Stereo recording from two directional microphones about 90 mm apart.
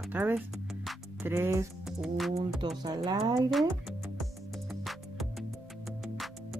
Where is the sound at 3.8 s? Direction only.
Centre (ahead or behind).